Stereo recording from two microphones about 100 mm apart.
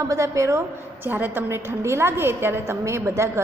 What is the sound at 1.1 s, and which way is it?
A woman's voice, 20° right (ahead or behind).